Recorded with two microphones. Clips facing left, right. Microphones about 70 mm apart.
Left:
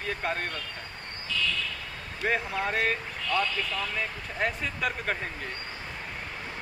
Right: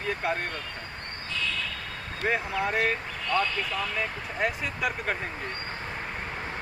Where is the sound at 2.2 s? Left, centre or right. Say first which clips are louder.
Right 1 dB; centre.